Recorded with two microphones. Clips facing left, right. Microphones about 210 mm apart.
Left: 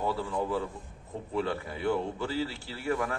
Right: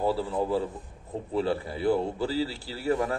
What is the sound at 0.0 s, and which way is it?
A man's voice, 35° right (ahead or behind).